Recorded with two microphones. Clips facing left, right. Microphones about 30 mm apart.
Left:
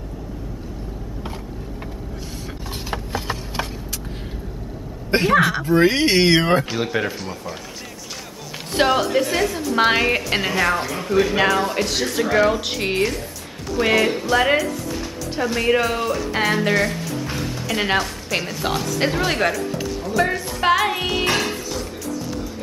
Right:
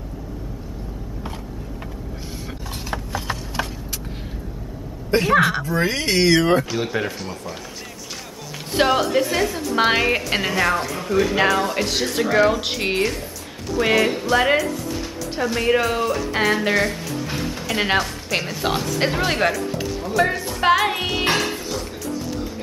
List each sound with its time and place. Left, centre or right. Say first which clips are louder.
5.3 s speech: even; centre
5.6 s speech: left 6 dB; left
6.7 s speech: left 1 dB; centre
8.7 s speech: even; centre
21.3 s a sound: even; centre